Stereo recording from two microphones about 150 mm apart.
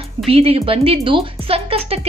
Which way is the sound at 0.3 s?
40° right (ahead or behind).